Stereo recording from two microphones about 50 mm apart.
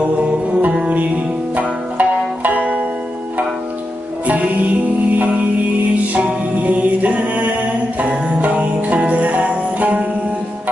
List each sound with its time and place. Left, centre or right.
0.0 s music: right
6.1 s music: right
8.0 s jingle bell: right